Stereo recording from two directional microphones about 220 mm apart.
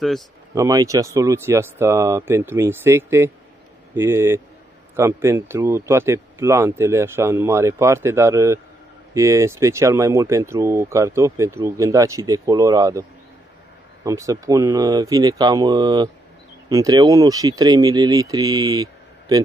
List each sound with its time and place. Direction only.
0.6 s speech: 15° right (ahead or behind)
14.0 s speech: 15° right (ahead or behind)